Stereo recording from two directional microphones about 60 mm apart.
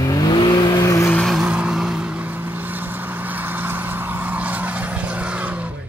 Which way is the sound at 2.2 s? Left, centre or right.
Right.